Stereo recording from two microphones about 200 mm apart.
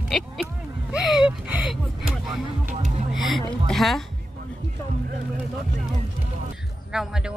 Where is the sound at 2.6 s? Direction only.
35° right (ahead or behind).